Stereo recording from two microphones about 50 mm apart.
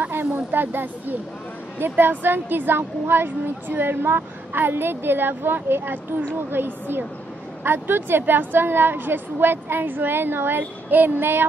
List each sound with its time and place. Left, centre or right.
0.0 s speech: right